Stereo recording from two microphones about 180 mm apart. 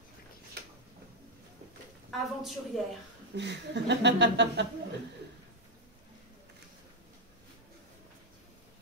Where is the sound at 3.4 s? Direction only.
70° right (ahead or behind).